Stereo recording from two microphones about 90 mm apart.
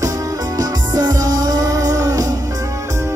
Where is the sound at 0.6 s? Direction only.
45° right (ahead or behind).